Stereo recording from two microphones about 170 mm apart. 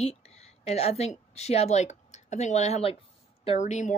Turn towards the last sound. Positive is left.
turn(degrees=40)  # may be behind; listen again after turning